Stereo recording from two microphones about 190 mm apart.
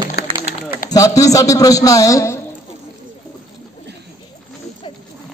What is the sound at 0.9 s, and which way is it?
A man's voice, 15° left (ahead or behind).